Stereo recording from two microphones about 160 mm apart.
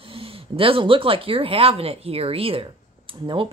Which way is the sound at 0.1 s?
35° right (ahead or behind).